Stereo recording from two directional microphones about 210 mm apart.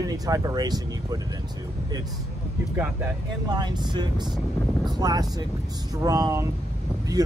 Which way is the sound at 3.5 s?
20° right (ahead or behind).